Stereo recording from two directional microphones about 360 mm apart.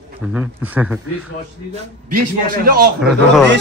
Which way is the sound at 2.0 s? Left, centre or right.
Right.